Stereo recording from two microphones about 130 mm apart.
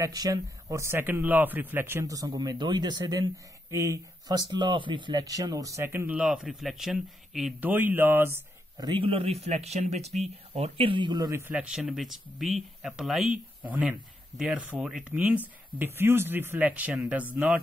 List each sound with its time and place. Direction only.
0.0 s speech: 30° right (ahead or behind); by 7.7 s 5° right (ahead or behind)
7.7 s speech: 15° right (ahead or behind)
8.7 s speech: 35° right (ahead or behind)
11.5 s speech: 5° right (ahead or behind)